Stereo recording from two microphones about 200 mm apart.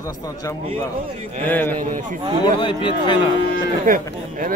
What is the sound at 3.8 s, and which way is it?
Speech, 45° right (ahead or behind).